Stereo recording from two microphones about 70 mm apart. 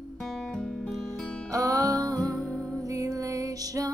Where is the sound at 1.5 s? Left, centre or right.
Right.